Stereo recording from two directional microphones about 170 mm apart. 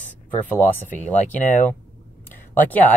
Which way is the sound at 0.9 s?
45° left (ahead or behind).